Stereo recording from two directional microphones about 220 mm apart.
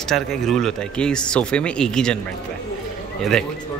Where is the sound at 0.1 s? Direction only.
Centre (ahead or behind).